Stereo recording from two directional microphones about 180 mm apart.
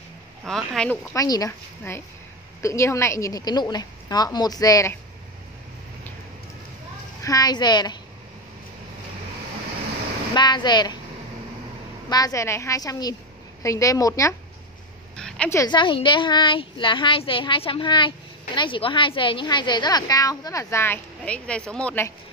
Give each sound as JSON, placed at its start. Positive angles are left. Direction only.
{"t": 0.5, "sound": "speech", "side_deg": 5}
{"t": 1.1, "sound": "a woman's voice", "side_deg": 20}
{"t": 7.2, "sound": "a woman's voice", "side_deg": 20}
{"t": 10.3, "sound": "a woman's voice", "side_deg": 25}
{"t": 12.1, "sound": "a woman's voice", "side_deg": 20}
{"t": 15.1, "sound": "a sound", "side_deg": 5}
{"t": 15.6, "sound": "a woman's voice", "side_deg": 25}